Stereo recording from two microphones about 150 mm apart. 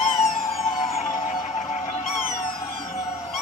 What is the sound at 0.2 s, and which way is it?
Emergency vehicle, 40° left (ahead or behind).